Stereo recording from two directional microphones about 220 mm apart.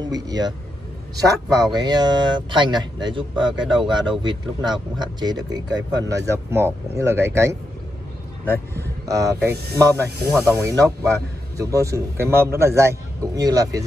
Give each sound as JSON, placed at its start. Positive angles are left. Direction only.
{"t": 0.0, "sound": "a man's voice", "side_deg": -20}
{"t": 9.0, "sound": "a man's voice", "side_deg": -15}